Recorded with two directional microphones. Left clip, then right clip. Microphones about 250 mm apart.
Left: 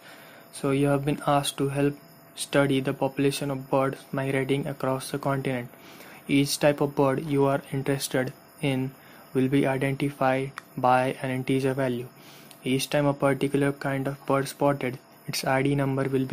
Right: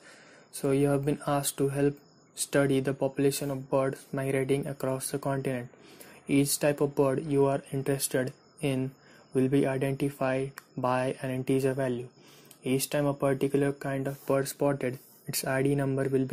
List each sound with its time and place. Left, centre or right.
0.6 s speech: centre